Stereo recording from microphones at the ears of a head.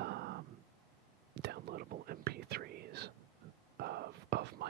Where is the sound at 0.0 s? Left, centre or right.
Right.